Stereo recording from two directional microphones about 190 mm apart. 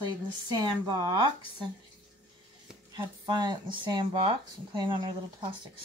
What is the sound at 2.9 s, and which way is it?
Speech, 20° right (ahead or behind).